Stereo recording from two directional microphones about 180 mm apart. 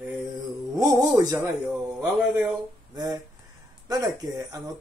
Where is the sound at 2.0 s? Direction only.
5° right (ahead or behind).